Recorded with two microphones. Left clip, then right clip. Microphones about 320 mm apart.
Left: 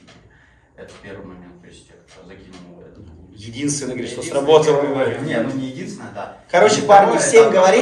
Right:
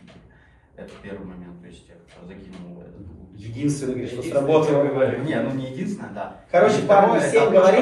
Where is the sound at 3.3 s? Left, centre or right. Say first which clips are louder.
Left 2 dB; left.